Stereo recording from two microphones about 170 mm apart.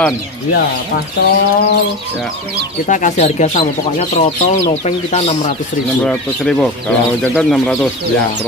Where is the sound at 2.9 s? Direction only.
45° left (ahead or behind).